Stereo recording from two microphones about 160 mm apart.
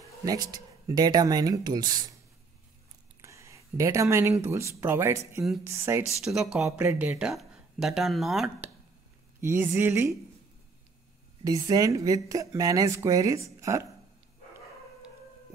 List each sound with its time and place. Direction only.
0.2 s a woman's voice: 25° right (ahead or behind)
3.2 s speech: 15° right (ahead or behind)
6.2 s speech: 5° right (ahead or behind)
9.4 s speech: 15° right (ahead or behind)
11.4 s a woman's voice: 20° right (ahead or behind)